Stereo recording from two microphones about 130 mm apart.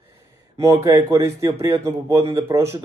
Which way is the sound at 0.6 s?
20° right (ahead or behind).